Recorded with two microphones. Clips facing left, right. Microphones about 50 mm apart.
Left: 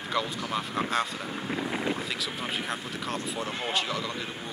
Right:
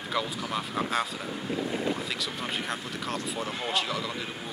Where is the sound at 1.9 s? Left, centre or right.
Centre.